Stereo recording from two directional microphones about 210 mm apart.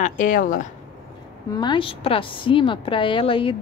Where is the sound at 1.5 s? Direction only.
20° left (ahead or behind).